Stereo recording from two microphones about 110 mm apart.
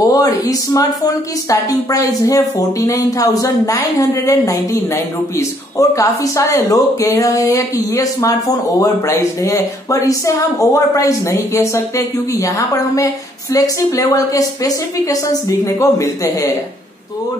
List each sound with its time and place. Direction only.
0.1 s a woman's voice: 35° left (ahead or behind)